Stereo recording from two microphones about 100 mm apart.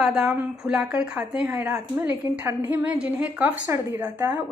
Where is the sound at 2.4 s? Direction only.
15° right (ahead or behind).